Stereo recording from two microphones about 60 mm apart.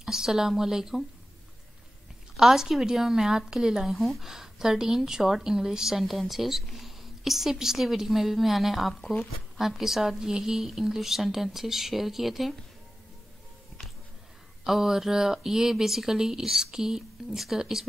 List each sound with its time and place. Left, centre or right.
0.0 s speech: centre
2.3 s speech: centre
9.0 s speech: left
9.6 s speech: centre
14.6 s speech: centre